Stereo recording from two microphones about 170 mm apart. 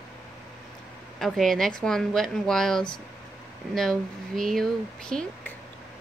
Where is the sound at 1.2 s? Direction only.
Centre (ahead or behind).